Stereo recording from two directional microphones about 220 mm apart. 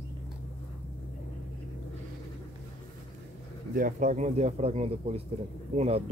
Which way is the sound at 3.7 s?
35° right (ahead or behind).